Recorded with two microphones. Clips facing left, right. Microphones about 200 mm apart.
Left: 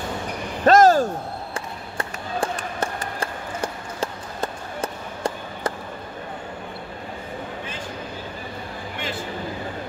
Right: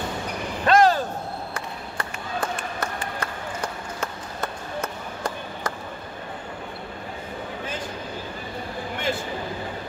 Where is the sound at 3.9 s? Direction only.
30° left (ahead or behind).